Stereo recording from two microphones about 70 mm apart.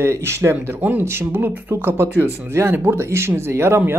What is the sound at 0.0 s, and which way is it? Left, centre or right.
Speech, right.